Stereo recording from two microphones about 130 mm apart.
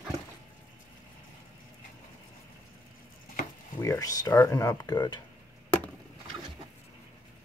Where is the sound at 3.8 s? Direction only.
25° left (ahead or behind).